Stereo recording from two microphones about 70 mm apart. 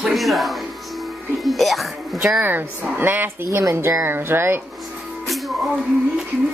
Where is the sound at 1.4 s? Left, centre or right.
Centre.